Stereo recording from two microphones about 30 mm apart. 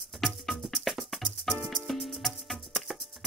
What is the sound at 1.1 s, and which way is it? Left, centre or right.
Music, centre.